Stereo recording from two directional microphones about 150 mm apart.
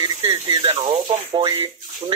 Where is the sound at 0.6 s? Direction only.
35° right (ahead or behind).